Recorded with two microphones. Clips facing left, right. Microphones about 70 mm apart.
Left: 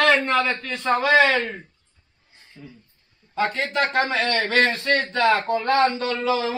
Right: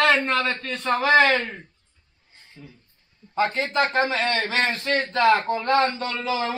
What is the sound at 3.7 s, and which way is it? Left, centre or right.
Speech, centre.